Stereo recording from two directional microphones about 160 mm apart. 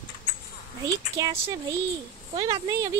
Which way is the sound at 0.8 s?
20° right (ahead or behind).